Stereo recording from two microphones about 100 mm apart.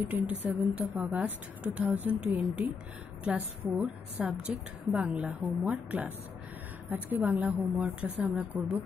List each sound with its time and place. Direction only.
0.0 s a woman's voice: 15° right (ahead or behind)
8.5 s speech: 35° right (ahead or behind)